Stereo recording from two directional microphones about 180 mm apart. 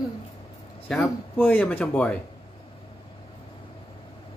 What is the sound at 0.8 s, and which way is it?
Speech, 5° left (ahead or behind).